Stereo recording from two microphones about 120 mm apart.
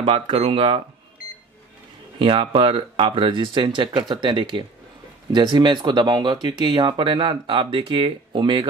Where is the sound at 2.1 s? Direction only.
45° right (ahead or behind).